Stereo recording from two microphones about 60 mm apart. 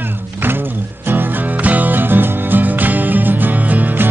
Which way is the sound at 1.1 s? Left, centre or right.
Right.